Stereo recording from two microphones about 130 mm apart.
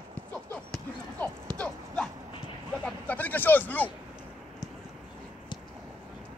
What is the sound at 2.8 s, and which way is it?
Speech, 15° left (ahead or behind).